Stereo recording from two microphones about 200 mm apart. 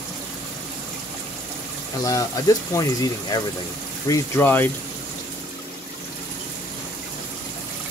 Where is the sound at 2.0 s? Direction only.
15° left (ahead or behind).